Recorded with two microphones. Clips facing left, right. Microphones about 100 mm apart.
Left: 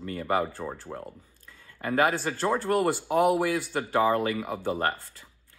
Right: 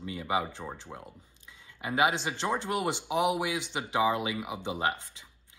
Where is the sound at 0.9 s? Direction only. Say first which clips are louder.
Left 6 dB; 15° left (ahead or behind).